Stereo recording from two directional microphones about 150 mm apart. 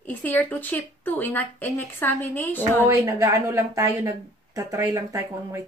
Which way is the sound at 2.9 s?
20° right (ahead or behind).